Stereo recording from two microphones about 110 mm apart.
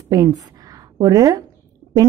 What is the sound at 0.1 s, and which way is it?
A woman's voice, 35° right (ahead or behind).